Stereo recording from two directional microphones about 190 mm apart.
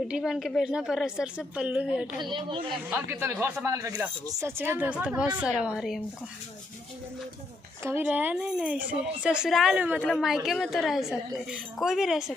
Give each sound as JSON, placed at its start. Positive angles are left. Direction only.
{"t": 0.1, "sound": "speech", "side_deg": 0}
{"t": 2.2, "sound": "speech", "side_deg": -25}
{"t": 2.9, "sound": "speech", "side_deg": -15}
{"t": 7.8, "sound": "speech", "side_deg": -10}